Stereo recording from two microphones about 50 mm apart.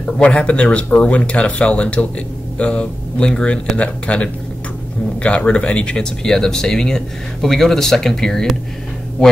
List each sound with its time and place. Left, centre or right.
0.0 s speech: left